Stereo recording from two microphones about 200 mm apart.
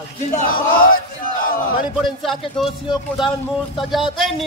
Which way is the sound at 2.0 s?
Centre (ahead or behind).